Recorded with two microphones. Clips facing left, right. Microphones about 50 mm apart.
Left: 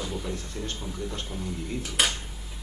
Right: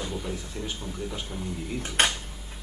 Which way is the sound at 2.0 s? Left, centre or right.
Right.